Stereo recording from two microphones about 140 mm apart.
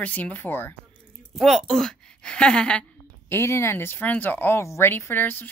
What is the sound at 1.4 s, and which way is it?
A woman's voice, centre (ahead or behind).